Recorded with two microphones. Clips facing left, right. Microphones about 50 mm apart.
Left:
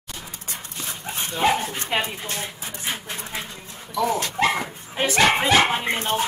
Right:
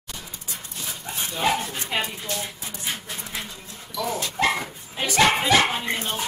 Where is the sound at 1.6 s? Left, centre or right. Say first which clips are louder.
Left 2 dB; left.